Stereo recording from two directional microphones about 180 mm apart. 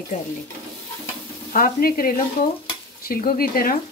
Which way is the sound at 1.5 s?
50° left (ahead or behind).